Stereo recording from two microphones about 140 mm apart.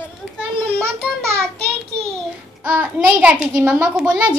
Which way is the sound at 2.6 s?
10° right (ahead or behind).